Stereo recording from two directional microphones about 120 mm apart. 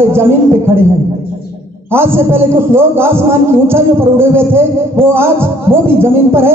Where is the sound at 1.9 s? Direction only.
20° right (ahead or behind).